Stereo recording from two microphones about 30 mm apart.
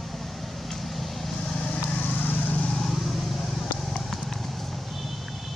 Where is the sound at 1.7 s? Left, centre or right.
Left.